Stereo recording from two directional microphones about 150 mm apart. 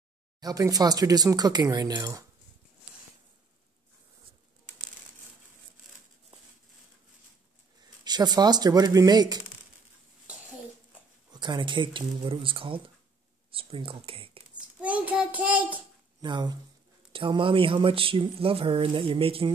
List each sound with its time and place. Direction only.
0.4 s speech: 25° right (ahead or behind)
8.0 s speech: 30° right (ahead or behind)
11.2 s speech: 30° right (ahead or behind)
14.8 s a child's voice: 10° right (ahead or behind)
16.2 s speech: 30° right (ahead or behind)